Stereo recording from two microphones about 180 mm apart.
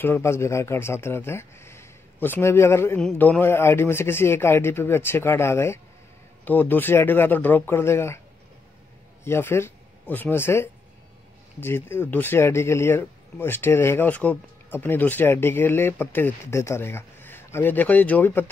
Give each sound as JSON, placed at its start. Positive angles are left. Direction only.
{"t": 0.0, "sound": "speech", "side_deg": 15}
{"t": 9.2, "sound": "speech", "side_deg": 15}